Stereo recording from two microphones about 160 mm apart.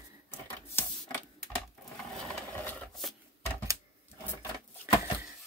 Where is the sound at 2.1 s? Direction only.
5° left (ahead or behind).